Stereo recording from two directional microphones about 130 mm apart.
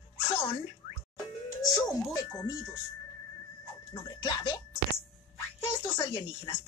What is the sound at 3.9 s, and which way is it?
Speech, 35° left (ahead or behind).